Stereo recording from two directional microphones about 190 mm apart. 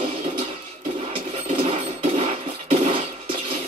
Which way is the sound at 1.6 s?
30° right (ahead or behind).